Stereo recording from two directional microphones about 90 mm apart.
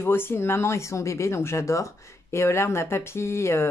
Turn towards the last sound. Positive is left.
turn(degrees=30)  # may be behind; listen again after turning